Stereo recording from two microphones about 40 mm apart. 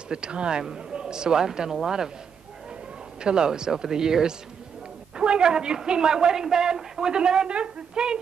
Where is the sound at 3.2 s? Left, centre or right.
Right.